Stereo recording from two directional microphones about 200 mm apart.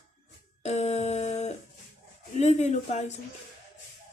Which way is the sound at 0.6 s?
35° left (ahead or behind).